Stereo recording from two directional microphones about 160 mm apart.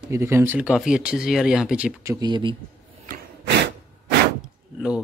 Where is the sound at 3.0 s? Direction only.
75° right (ahead or behind).